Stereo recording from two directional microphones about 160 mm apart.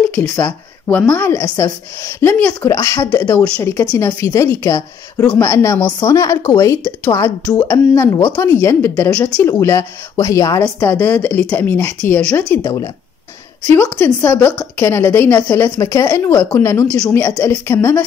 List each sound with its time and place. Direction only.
0.1 s a woman's voice: 10° left (ahead or behind)
3.3 s a woman's voice: 5° left (ahead or behind)
12.6 s a woman's voice: 25° left (ahead or behind)
14.0 s a woman's voice: 10° left (ahead or behind)